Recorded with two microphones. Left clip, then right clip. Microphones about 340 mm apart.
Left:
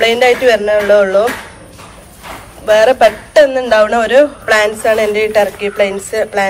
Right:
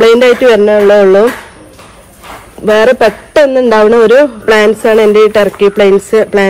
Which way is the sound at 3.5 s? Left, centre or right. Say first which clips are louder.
Right 4 dB; centre.